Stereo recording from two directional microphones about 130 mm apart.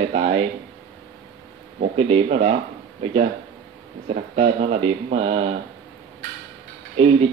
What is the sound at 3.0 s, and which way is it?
Speech, 50° right (ahead or behind).